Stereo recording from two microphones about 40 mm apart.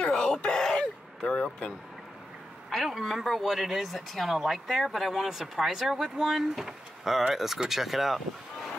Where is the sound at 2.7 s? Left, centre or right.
Centre.